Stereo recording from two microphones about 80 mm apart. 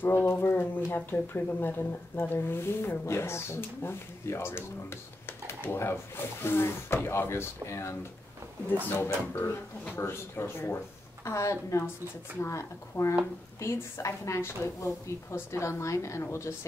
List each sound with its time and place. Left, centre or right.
0.0 s a woman's voice: left
9.0 s a woman's voice: left